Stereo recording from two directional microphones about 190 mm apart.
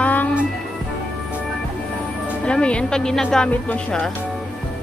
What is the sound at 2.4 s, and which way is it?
A woman's voice, 5° left (ahead or behind).